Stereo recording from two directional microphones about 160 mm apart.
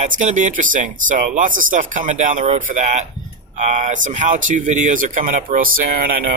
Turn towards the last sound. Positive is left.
turn(degrees=-60)  # may be behind; listen again after turning